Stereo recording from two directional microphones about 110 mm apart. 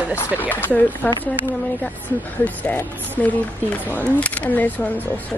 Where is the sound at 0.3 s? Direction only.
15° left (ahead or behind).